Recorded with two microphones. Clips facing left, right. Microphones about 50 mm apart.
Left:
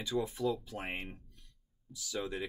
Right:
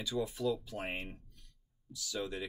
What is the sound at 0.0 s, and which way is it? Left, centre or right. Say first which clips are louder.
Speech: left 1 dB; left.